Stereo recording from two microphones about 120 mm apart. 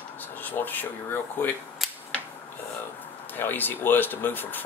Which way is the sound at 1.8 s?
Centre (ahead or behind).